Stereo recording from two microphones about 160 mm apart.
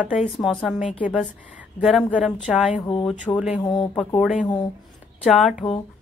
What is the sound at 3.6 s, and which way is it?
Speech, 25° left (ahead or behind).